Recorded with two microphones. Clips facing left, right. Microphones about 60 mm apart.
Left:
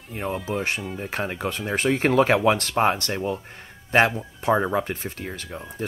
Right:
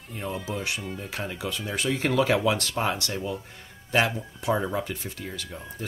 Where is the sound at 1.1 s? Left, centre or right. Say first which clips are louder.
Left 5 dB; left.